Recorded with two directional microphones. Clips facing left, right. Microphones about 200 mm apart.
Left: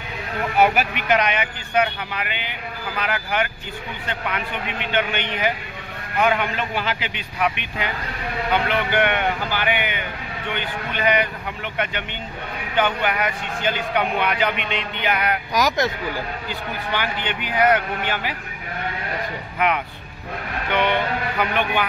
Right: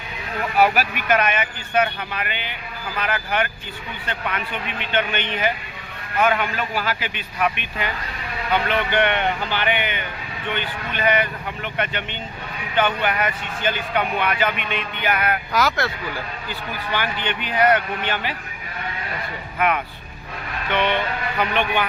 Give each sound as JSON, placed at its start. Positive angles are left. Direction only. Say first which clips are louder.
{"t": 0.6, "sound": "speech", "louder": "even", "side_deg": 20}
{"t": 8.9, "sound": "speech", "louder": "even", "side_deg": 10}
{"t": 20.7, "sound": "speech", "louder": "left 1 dB", "side_deg": 10}